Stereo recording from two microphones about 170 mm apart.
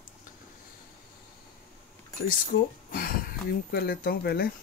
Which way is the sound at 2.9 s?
60° left (ahead or behind).